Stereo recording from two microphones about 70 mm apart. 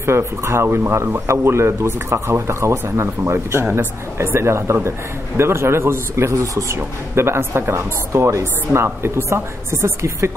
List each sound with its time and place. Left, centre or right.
0.0 s speech: right
7.2 s speech: right